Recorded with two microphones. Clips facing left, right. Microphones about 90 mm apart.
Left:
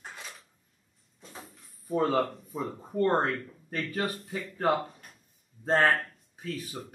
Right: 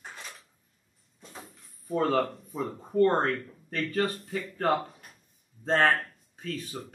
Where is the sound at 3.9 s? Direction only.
15° left (ahead or behind).